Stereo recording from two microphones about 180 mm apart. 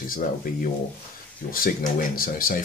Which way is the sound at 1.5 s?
50° left (ahead or behind).